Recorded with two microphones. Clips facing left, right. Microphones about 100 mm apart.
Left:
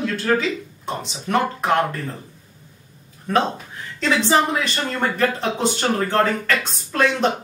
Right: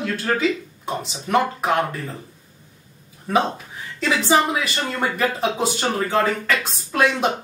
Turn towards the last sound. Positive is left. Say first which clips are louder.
# even
turn(degrees=-5)  # may be behind; listen again after turning